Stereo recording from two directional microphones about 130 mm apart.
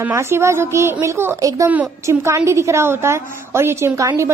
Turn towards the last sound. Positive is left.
turn(degrees=-25)  # may be behind; listen again after turning